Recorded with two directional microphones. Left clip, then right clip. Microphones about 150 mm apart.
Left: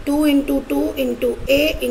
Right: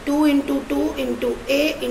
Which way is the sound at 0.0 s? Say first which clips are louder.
Left 1 dB; 50° left (ahead or behind).